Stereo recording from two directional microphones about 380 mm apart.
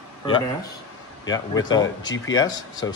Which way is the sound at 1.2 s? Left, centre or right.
Centre.